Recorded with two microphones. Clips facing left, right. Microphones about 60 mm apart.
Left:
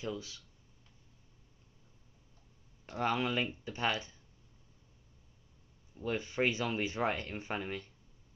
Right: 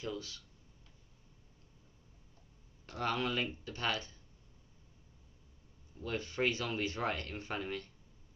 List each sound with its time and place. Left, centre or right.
0.0 s speech: centre
2.9 s speech: centre
5.9 s speech: centre